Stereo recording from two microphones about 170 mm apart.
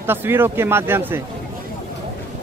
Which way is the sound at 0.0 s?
15° right (ahead or behind).